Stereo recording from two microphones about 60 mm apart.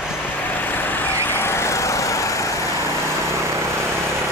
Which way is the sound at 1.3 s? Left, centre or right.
Left.